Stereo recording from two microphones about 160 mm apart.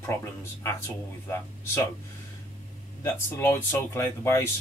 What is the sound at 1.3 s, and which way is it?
Speech, 15° left (ahead or behind).